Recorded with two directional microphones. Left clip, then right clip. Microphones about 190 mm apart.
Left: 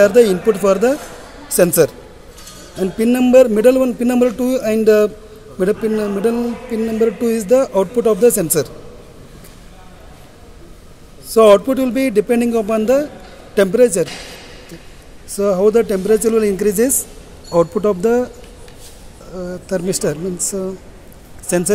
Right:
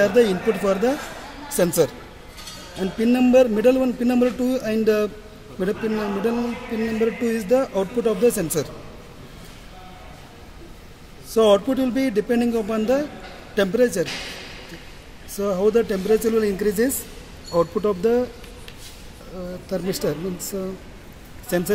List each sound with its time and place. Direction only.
0.0 s a man's voice: 40° left (ahead or behind)
11.3 s a man's voice: 40° left (ahead or behind)
15.3 s a man's voice: 40° left (ahead or behind)
19.3 s a man's voice: 40° left (ahead or behind)